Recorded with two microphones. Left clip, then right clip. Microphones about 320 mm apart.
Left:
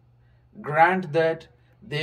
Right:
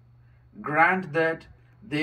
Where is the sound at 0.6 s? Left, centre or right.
Left.